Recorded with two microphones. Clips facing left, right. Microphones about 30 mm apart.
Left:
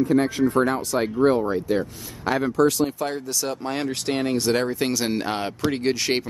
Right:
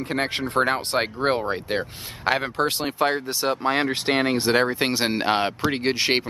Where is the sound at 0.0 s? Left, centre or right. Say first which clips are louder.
Left 6 dB; right.